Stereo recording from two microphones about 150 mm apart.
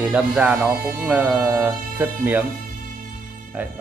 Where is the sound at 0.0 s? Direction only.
5° right (ahead or behind).